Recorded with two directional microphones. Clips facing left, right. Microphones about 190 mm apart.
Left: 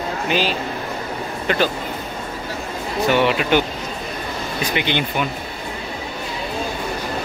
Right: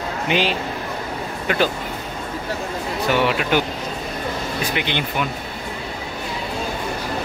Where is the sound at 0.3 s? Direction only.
20° right (ahead or behind).